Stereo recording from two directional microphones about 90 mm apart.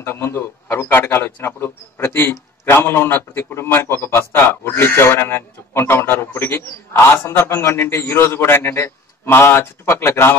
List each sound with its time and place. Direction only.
0.0 s a man's voice: 25° left (ahead or behind)